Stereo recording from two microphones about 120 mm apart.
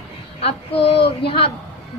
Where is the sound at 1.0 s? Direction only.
50° left (ahead or behind).